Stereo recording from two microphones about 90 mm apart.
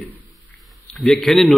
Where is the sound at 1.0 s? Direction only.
Centre (ahead or behind).